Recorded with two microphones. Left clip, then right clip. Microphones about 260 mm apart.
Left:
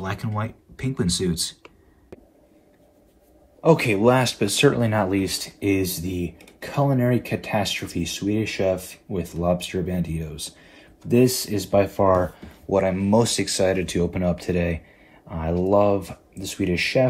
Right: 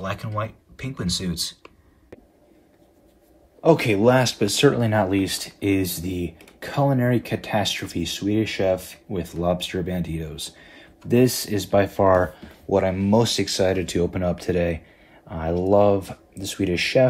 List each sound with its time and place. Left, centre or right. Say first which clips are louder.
0.0 s speech: right 1 dB; centre
3.6 s a man's voice: even; right
4.6 s speech: right 1 dB; right
14.1 s a man's voice: even; right
14.5 s speech: right 2 dB; right